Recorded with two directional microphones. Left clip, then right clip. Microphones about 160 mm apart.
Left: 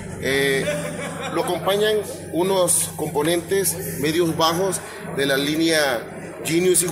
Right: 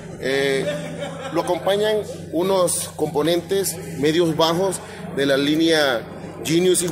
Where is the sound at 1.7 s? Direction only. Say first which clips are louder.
Left 2 dB; 55° right (ahead or behind).